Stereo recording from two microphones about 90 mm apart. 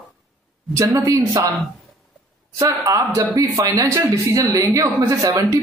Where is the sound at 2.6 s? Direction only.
35° right (ahead or behind).